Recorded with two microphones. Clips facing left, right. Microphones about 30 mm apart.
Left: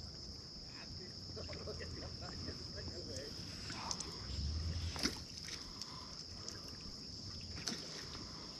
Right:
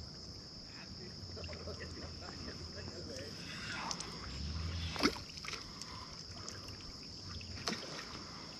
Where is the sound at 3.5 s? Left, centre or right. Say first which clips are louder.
Right 4 dB; right.